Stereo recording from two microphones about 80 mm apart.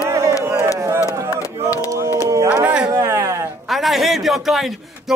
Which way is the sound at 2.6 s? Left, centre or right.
Centre.